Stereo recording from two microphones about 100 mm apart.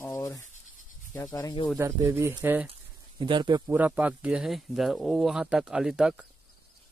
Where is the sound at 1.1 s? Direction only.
35° left (ahead or behind).